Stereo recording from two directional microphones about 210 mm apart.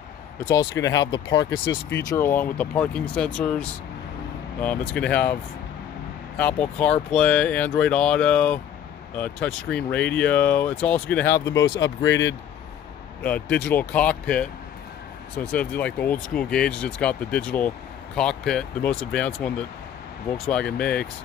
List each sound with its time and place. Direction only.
0.8 s speech: 20° left (ahead or behind)
1.7 s speech: 55° left (ahead or behind)
2.0 s speech: 10° left (ahead or behind)
12.0 s speech: 60° left (ahead or behind)
13.2 s speech: 5° left (ahead or behind)